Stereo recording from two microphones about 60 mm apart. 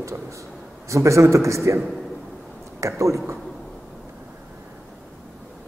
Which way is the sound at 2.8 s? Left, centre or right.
Right.